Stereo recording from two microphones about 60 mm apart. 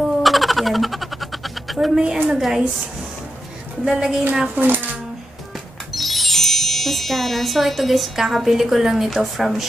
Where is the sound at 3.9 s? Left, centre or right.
Centre.